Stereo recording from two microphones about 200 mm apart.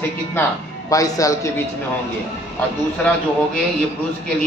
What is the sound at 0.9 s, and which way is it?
Speech, 15° left (ahead or behind).